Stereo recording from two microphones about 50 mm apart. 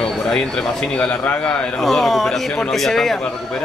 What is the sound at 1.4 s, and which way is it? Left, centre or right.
Speech, left.